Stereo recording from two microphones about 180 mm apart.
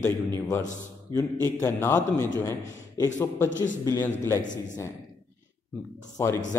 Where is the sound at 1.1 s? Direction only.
15° left (ahead or behind).